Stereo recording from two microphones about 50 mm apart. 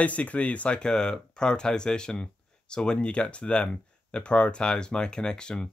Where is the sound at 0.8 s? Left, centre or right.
Centre.